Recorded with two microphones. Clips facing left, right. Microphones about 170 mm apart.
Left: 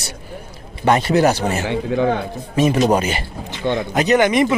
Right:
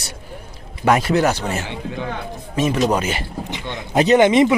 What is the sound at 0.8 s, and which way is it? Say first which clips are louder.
Speech: left 1 dB; 5° right (ahead or behind).